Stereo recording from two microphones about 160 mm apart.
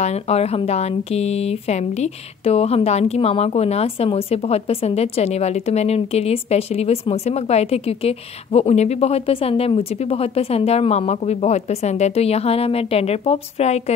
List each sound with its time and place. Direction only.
0.0 s speech: 40° left (ahead or behind)